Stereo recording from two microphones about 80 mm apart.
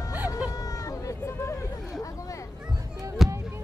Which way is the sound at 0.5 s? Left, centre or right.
Left.